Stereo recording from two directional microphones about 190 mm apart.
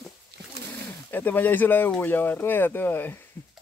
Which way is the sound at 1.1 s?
10° left (ahead or behind).